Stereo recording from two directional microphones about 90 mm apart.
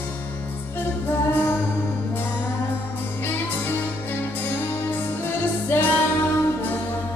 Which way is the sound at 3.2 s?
25° left (ahead or behind).